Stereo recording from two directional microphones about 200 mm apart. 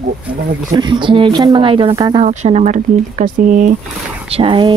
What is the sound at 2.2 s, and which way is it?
Speech, 35° right (ahead or behind).